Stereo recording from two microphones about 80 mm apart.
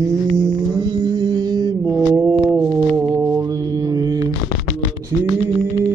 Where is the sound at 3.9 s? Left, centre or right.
Right.